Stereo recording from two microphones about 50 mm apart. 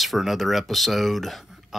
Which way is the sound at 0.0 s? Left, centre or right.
Centre.